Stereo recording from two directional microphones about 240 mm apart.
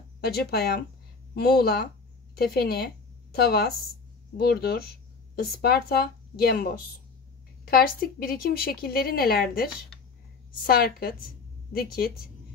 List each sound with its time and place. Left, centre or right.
0.2 s a woman's voice: left